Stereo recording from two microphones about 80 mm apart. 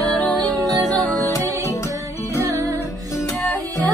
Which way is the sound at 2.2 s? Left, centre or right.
Left.